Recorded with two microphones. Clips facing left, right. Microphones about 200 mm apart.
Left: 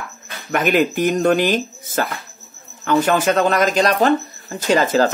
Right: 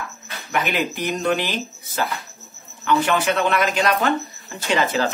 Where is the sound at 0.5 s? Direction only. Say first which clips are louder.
Left 6 dB; 50° left (ahead or behind).